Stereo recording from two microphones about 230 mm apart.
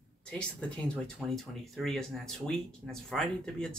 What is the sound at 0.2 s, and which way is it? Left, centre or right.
Speech, centre.